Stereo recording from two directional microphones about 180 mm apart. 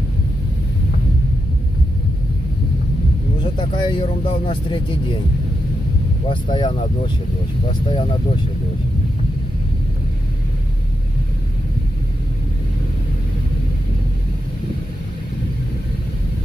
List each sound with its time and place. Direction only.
3.5 s speech: 30° left (ahead or behind)
6.2 s speech: 25° left (ahead or behind)
7.9 s speech: 30° left (ahead or behind)